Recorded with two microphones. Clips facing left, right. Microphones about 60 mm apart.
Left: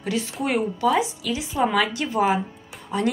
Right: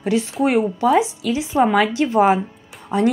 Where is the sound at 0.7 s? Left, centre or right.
Right.